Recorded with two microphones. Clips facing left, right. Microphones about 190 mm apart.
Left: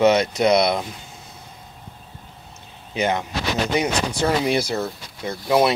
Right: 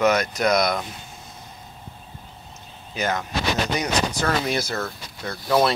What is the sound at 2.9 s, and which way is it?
Speech, 25° left (ahead or behind).